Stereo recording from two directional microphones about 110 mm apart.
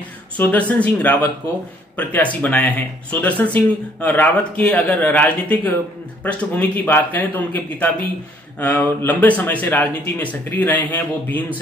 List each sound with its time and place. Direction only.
0.4 s speech: 15° left (ahead or behind)
2.4 s speech: 15° left (ahead or behind)